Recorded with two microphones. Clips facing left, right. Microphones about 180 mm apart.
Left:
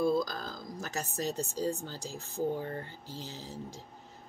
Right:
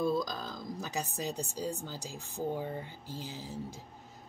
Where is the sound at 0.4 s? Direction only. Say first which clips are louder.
Right 1 dB; 15° right (ahead or behind).